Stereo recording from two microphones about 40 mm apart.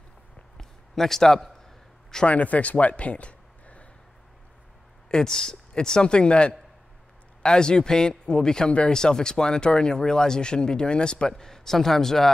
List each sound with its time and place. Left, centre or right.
0.6 s a sound: centre
2.2 s speech: left
5.1 s speech: centre
11.3 s a man's voice: centre